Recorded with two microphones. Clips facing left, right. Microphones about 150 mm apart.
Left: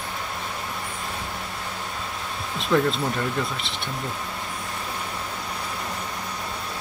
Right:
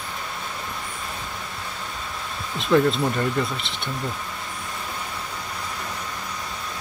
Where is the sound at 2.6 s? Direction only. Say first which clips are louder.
Right 3 dB; centre (ahead or behind).